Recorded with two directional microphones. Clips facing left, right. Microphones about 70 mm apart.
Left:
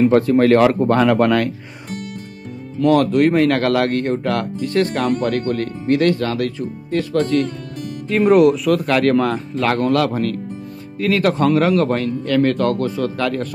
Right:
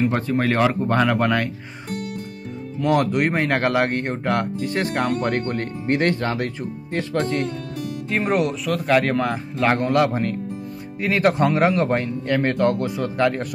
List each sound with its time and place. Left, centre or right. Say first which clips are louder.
0.0 s a man's voice: left 8 dB; centre
2.9 s speech: left 5 dB; centre
8.2 s a man's voice: left 10 dB; centre
9.6 s speech: left 1 dB; centre